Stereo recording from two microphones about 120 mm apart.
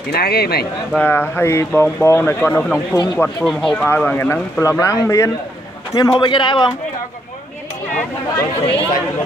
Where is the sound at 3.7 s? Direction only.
15° left (ahead or behind).